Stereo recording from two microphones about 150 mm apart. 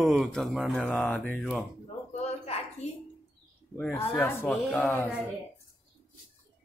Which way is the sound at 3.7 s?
5° left (ahead or behind).